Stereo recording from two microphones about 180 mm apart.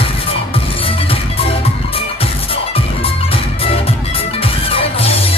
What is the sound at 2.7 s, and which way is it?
Music, 30° left (ahead or behind).